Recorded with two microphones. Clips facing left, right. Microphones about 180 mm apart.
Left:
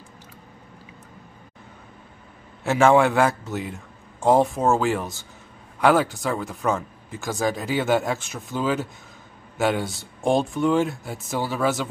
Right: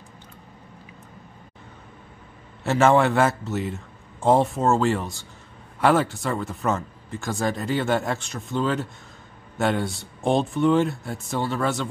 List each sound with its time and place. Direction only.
2.6 s speech: centre (ahead or behind)